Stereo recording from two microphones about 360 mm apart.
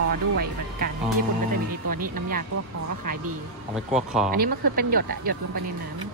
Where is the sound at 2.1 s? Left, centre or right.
Right.